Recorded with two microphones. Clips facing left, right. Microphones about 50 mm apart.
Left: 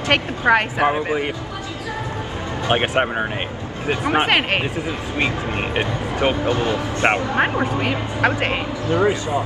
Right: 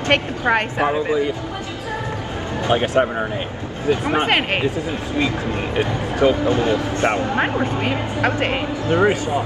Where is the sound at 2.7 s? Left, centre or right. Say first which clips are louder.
Right 1 dB; left.